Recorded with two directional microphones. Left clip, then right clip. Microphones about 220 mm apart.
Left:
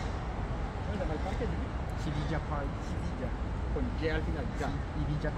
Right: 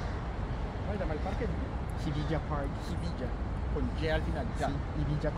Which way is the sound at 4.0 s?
50° right (ahead or behind).